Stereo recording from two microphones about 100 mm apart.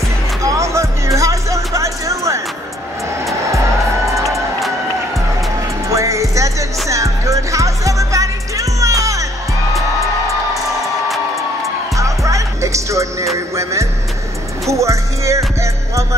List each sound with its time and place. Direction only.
0.4 s music: 30° right (ahead or behind)
3.5 s music: 30° right (ahead or behind)
5.9 s music: 30° right (ahead or behind)
12.0 s music: 30° right (ahead or behind)